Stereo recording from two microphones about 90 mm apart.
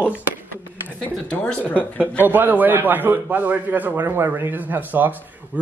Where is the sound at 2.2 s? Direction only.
20° right (ahead or behind).